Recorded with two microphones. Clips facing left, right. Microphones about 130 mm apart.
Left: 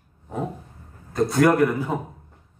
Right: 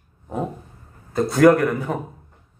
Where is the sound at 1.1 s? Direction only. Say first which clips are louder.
Right 4 dB; centre (ahead or behind).